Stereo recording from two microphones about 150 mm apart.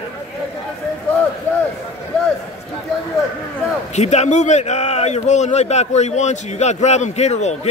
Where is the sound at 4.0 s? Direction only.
50° left (ahead or behind).